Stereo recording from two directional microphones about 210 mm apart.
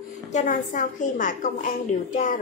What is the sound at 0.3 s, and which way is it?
A woman's voice, 35° left (ahead or behind).